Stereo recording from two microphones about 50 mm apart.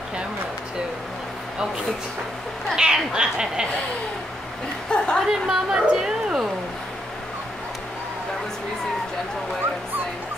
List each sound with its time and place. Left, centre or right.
2.7 s a woman's voice: centre
4.9 s a woman's voice: centre
5.2 s a woman's voice: centre